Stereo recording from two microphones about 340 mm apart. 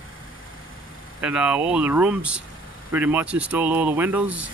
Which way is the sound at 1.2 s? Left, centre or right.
Centre.